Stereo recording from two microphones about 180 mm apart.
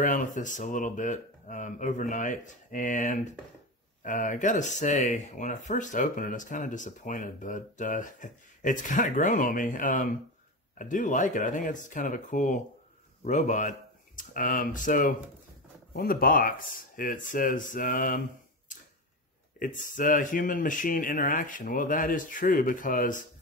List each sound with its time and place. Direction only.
0.0 s speech: 45° left (ahead or behind)
19.6 s speech: 50° left (ahead or behind)